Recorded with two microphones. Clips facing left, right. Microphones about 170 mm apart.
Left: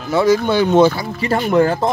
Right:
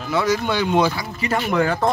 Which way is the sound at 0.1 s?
30° left (ahead or behind).